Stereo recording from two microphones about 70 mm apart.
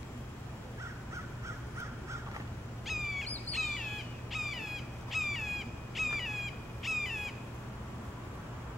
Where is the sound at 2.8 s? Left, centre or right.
Centre.